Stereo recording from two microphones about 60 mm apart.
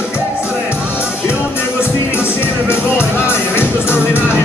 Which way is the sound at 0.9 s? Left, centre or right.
Right.